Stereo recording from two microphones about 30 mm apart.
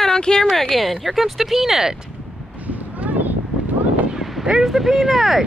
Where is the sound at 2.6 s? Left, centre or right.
Right.